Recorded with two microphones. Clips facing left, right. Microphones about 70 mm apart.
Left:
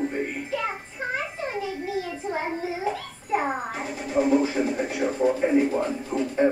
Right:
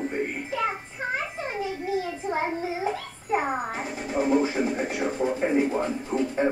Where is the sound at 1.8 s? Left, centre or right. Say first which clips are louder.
Right 1 dB; right.